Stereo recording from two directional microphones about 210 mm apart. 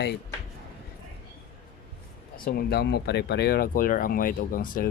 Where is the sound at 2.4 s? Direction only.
50° left (ahead or behind).